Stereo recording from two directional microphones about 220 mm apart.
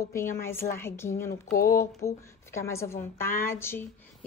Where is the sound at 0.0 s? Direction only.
10° left (ahead or behind).